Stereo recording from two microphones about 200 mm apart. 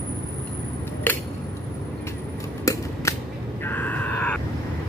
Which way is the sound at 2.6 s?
15° left (ahead or behind).